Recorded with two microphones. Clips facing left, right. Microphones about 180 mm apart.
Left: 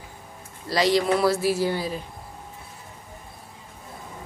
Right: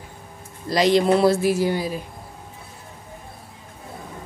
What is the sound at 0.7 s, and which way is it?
Speech, 20° right (ahead or behind).